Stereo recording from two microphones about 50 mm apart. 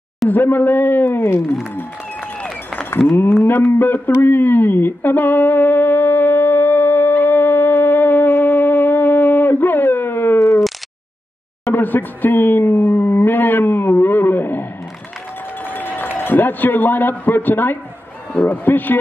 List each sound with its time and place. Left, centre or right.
0.3 s speech: left
3.1 s speech: left
3.8 s a sound: left
11.7 s a man's voice: left